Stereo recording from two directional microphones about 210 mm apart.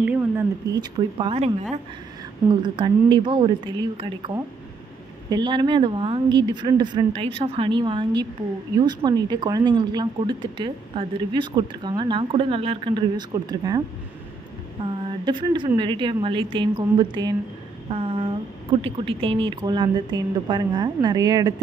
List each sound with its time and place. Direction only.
0.0 s speech: 10° right (ahead or behind); by 1.5 s 25° right (ahead or behind)
2.6 s speech: 20° right (ahead or behind)
5.3 s speech: 20° right (ahead or behind)
15.2 s speech: 20° right (ahead or behind)